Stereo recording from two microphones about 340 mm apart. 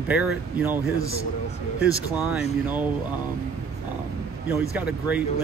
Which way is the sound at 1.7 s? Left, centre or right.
Centre.